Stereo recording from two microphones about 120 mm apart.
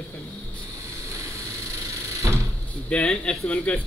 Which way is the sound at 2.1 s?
25° right (ahead or behind).